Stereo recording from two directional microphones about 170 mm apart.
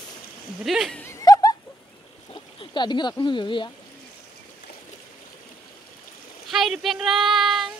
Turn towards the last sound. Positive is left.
turn(degrees=0)  # may be behind; listen again after turning